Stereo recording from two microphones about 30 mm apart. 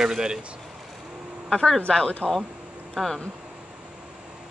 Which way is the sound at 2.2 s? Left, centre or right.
Right.